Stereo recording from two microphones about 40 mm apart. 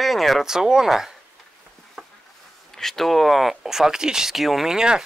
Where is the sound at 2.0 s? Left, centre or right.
Centre.